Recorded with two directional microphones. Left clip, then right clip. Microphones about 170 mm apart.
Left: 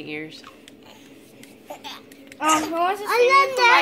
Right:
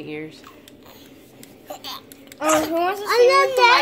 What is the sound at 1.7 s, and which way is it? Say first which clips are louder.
Speech: right 3 dB; 60° right (ahead or behind).